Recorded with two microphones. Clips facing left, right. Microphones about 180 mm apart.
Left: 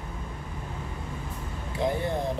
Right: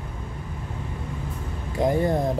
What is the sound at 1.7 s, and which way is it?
Speech, 45° right (ahead or behind).